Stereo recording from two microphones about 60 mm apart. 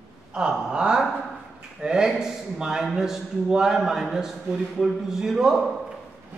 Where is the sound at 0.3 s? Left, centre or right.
Centre.